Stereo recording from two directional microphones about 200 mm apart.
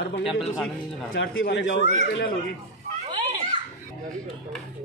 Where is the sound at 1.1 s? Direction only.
65° left (ahead or behind).